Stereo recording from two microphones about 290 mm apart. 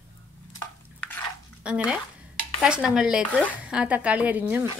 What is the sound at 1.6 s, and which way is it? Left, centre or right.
Speech, centre.